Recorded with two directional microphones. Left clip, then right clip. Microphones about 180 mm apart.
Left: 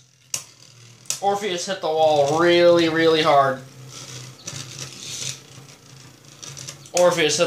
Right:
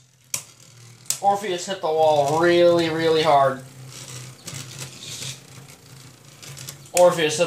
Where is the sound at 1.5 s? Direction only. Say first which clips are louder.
Even; 30° left (ahead or behind).